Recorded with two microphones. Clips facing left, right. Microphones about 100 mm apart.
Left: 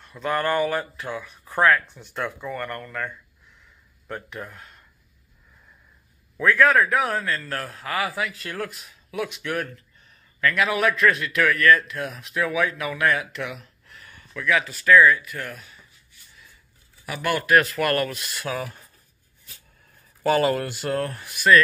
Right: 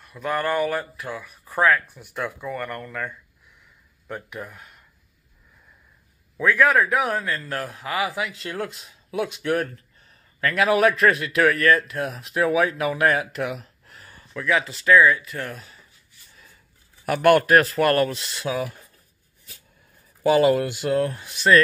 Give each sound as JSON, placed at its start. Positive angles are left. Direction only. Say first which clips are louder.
{"t": 0.0, "sound": "speech", "louder": "left 1 dB", "side_deg": -5}
{"t": 6.3, "sound": "a man's voice", "louder": "even", "side_deg": -15}
{"t": 17.0, "sound": "speech", "louder": "right 9 dB", "side_deg": -55}
{"t": 17.5, "sound": "a man's voice", "louder": "right 2 dB", "side_deg": -35}
{"t": 20.2, "sound": "speech", "louder": "right 3 dB", "side_deg": -15}